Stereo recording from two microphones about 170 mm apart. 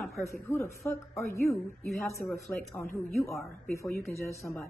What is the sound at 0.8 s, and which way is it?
Speech, 15° left (ahead or behind).